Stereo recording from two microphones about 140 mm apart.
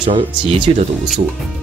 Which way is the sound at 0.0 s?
40° right (ahead or behind).